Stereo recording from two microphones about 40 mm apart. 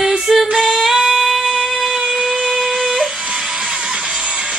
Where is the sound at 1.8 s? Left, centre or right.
Centre.